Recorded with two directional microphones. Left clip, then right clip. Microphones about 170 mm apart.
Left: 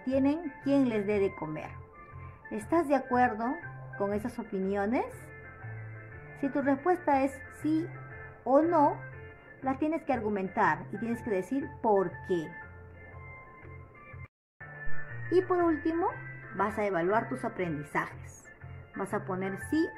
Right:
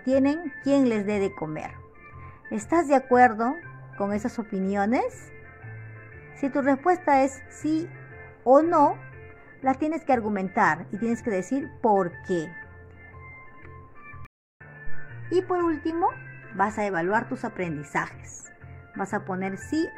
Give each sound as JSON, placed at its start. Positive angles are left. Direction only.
{"t": 0.0, "sound": "a woman's voice", "side_deg": -40}
{"t": 6.4, "sound": "a woman's voice", "side_deg": -40}
{"t": 15.2, "sound": "speech", "side_deg": -25}